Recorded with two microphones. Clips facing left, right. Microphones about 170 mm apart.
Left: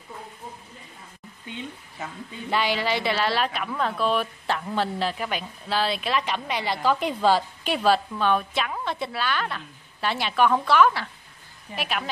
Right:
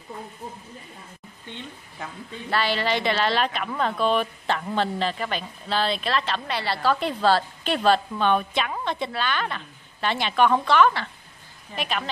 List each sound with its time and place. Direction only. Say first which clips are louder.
2.5 s a woman's voice: even; 15° left (ahead or behind)